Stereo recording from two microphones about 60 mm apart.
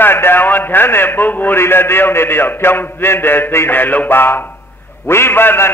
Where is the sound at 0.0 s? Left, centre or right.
Left.